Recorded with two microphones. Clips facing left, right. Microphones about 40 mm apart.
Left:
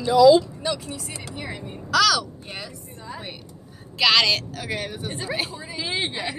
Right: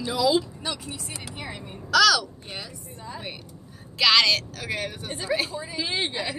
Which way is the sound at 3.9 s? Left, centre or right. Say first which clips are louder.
Left 1 dB; centre.